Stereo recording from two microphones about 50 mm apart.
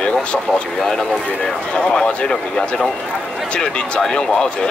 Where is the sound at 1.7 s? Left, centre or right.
Centre.